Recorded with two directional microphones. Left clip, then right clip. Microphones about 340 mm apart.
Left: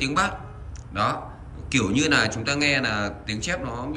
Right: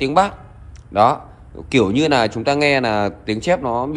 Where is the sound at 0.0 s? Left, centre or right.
Centre.